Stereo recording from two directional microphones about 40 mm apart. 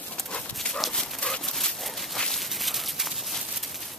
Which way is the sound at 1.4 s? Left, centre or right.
Centre.